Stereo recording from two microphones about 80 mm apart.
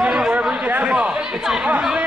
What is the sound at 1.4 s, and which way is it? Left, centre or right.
Speech, centre.